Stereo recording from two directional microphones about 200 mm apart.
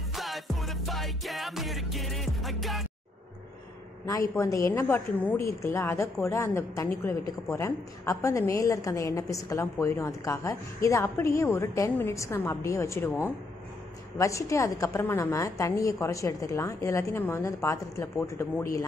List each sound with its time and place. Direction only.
0.1 s music: centre (ahead or behind)
4.4 s a woman's voice: 15° left (ahead or behind)